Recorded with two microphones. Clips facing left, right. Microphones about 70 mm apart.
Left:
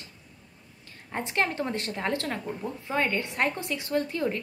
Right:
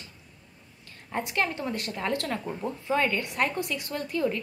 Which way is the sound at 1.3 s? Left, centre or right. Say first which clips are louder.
Left 2 dB; left.